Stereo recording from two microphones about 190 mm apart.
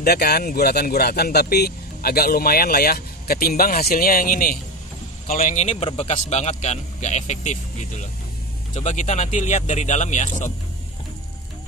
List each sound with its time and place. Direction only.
0.0 s speech: 55° left (ahead or behind); by 7.5 s 40° left (ahead or behind)
8.7 s speech: 40° left (ahead or behind)